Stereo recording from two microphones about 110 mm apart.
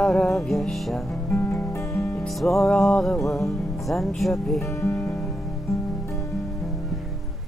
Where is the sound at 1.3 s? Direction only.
20° left (ahead or behind).